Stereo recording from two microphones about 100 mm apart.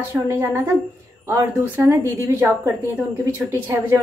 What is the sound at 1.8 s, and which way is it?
A woman's voice, 25° right (ahead or behind).